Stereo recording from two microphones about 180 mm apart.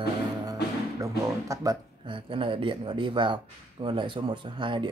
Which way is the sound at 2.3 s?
30° right (ahead or behind).